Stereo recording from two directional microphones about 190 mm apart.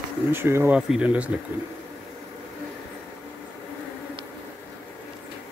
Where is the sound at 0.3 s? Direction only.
10° right (ahead or behind).